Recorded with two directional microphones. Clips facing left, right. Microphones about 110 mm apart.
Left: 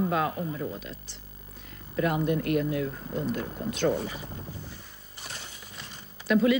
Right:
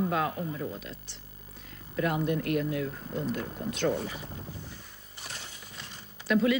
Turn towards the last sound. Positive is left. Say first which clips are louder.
# left 3 dB
turn(degrees=10)  # may be behind; listen again after turning